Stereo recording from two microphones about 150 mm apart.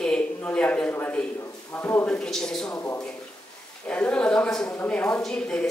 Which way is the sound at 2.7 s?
20° left (ahead or behind).